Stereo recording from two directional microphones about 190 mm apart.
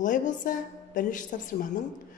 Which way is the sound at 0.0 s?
45° left (ahead or behind).